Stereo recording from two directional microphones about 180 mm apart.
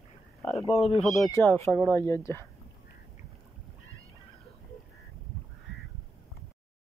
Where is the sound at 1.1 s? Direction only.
20° left (ahead or behind).